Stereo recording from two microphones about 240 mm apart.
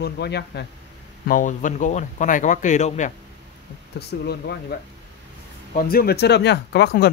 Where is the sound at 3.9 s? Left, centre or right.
Left.